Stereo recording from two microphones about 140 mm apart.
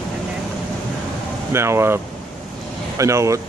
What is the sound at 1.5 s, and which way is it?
Speech, 20° right (ahead or behind).